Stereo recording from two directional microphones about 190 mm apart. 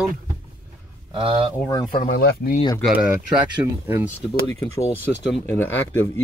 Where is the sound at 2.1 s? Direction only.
50° left (ahead or behind).